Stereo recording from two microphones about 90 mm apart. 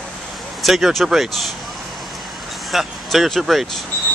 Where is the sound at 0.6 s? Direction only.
Centre (ahead or behind).